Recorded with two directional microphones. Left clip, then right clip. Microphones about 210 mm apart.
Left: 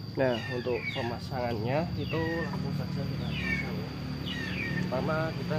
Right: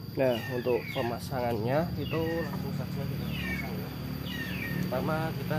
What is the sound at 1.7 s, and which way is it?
Speech, 30° right (ahead or behind).